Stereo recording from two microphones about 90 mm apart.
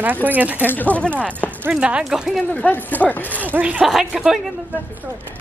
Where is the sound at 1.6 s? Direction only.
10° right (ahead or behind).